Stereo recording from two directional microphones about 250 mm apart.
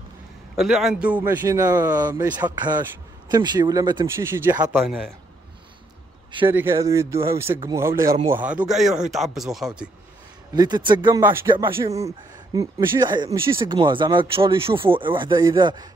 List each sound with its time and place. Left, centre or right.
0.6 s speech: centre
6.5 s speech: centre
10.5 s speech: centre